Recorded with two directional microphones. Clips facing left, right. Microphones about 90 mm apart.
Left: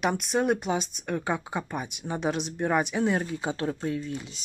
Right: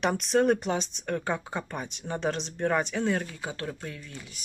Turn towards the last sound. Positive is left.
turn(degrees=25)  # may be behind; listen again after turning